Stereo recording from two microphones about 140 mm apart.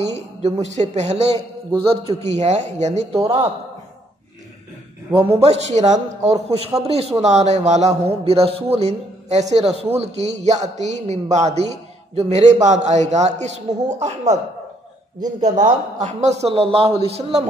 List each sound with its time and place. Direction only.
0.1 s a man's voice: 55° right (ahead or behind)
5.1 s a man's voice: 45° right (ahead or behind)
15.1 s speech: 30° right (ahead or behind)
15.5 s speech: 60° right (ahead or behind)
16.5 s a man's voice: 45° right (ahead or behind)